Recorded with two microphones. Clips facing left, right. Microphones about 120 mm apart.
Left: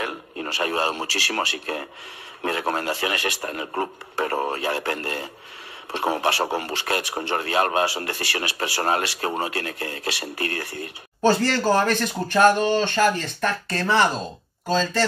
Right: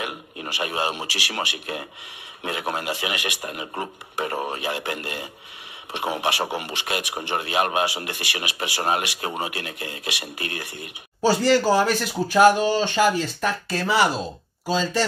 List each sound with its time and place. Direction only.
0.0 s a man's voice: 15° right (ahead or behind)
6.6 s speech: 15° right (ahead or behind)